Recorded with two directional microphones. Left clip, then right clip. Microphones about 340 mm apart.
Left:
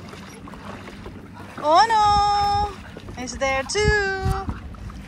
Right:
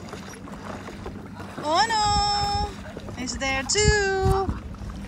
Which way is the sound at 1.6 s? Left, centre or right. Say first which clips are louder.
Left 6 dB; centre.